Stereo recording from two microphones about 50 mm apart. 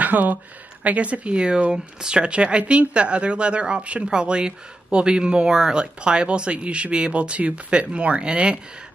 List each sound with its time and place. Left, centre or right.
0.0 s speech: right